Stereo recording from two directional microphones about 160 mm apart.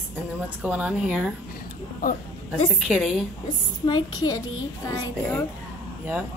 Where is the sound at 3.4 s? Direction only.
25° left (ahead or behind).